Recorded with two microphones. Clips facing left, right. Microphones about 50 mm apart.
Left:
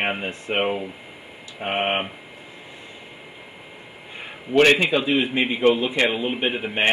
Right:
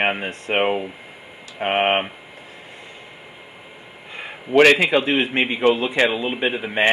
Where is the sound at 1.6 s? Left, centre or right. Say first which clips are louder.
Right 5 dB; right.